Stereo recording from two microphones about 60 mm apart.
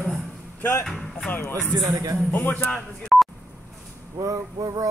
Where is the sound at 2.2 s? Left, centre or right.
Left.